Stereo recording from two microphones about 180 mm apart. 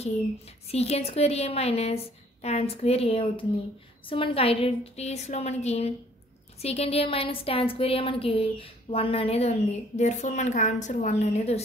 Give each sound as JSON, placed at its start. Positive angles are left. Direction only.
{"t": 0.7, "sound": "speech", "side_deg": 35}